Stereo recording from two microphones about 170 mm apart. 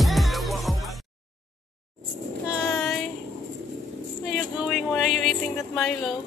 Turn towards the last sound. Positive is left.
turn(degrees=0)  # may be behind; listen again after turning